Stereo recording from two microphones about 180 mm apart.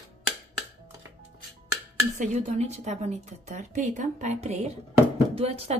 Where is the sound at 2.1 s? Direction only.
40° right (ahead or behind).